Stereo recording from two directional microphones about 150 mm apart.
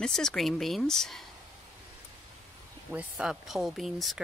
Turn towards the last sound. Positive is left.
turn(degrees=0)  # may be behind; listen again after turning